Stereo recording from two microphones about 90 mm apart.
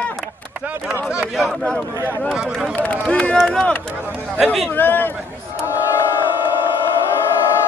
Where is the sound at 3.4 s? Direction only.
10° left (ahead or behind).